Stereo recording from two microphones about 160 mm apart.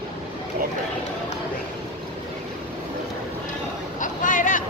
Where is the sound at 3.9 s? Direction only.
55° left (ahead or behind).